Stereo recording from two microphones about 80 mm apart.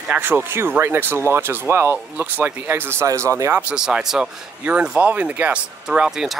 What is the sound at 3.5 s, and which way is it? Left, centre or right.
Speech, centre.